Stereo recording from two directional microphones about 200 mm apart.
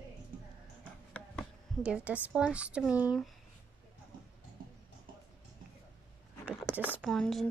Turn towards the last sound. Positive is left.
turn(degrees=0)  # may be behind; listen again after turning